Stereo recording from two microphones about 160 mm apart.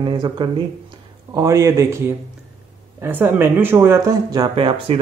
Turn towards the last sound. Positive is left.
turn(degrees=-30)  # may be behind; listen again after turning